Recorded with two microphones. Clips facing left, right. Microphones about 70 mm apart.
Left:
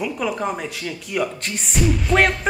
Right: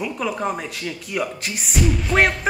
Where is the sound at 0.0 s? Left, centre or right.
Centre.